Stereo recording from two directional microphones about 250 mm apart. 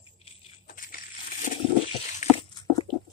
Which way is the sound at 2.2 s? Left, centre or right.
Left.